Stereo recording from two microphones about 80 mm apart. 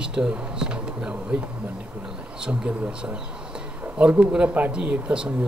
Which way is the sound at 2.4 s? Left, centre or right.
Centre.